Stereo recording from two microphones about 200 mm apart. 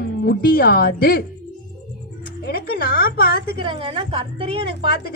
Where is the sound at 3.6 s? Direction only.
25° right (ahead or behind).